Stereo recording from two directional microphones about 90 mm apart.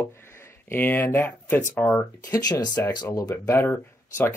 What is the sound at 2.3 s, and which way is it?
Speech, 45° left (ahead or behind).